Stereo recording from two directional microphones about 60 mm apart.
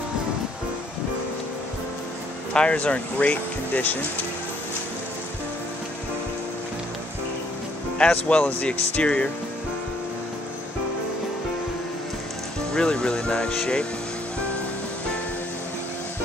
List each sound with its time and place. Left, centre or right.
2.5 s speech: centre
8.0 s speech: left
12.7 s speech: centre